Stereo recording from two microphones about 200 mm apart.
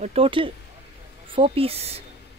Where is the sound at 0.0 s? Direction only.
30° right (ahead or behind).